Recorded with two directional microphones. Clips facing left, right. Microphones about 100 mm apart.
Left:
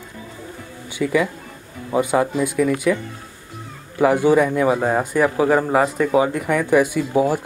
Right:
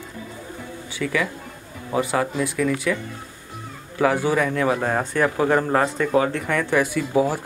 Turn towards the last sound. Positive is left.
turn(degrees=15)  # may be behind; listen again after turning